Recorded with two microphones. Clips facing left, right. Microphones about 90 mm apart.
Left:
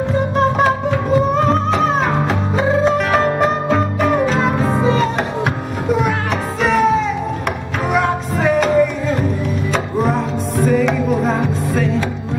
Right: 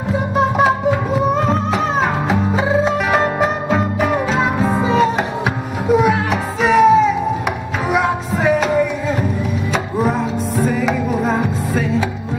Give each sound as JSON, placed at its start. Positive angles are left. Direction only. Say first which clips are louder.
{"t": 0.1, "sound": "music", "louder": "right 1 dB", "side_deg": -5}